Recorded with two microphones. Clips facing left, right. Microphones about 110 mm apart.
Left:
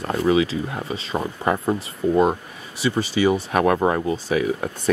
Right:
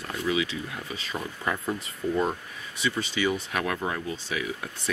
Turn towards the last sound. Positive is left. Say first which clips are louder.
# left 10 dB
turn(degrees=40)  # may be behind; listen again after turning